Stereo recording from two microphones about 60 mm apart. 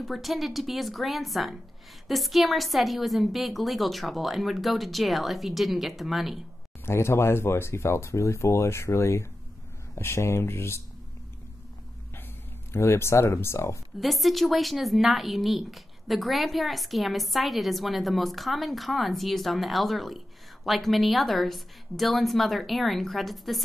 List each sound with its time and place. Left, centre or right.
0.0 s speech: centre
6.9 s speech: left
12.7 s speech: left
13.9 s speech: centre